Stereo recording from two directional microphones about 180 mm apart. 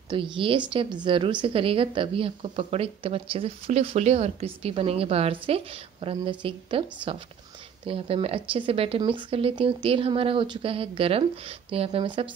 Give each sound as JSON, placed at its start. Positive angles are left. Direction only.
{"t": 0.1, "sound": "speech", "side_deg": -25}